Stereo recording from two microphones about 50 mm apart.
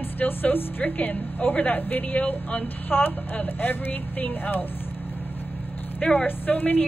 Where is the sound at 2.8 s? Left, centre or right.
Left.